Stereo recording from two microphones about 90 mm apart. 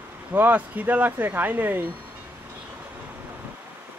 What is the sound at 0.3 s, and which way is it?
Speech, 20° right (ahead or behind).